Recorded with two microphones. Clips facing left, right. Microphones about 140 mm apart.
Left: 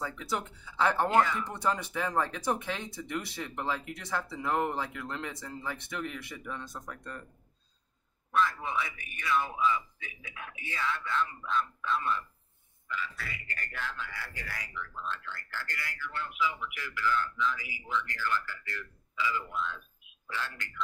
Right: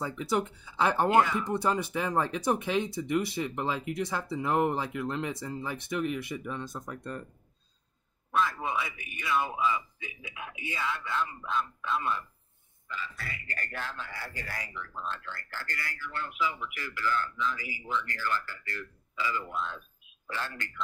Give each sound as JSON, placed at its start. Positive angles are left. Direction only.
{"t": 0.0, "sound": "speech", "side_deg": -15}
{"t": 8.6, "sound": "speech", "side_deg": -10}
{"t": 12.8, "sound": "a man's voice", "side_deg": -35}